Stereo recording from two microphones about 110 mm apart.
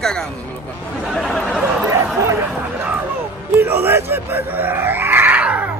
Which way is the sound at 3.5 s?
20° right (ahead or behind).